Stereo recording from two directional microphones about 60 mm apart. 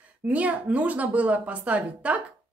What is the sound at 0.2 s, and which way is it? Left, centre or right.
A woman's voice, right.